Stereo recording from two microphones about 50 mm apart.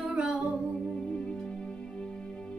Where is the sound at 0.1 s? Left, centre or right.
Centre.